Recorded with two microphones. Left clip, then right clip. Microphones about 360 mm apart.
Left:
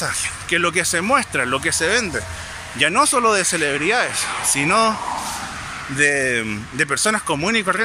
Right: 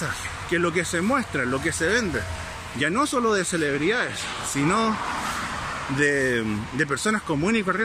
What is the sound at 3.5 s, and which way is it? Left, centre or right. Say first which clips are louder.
Speech: left 4 dB; left.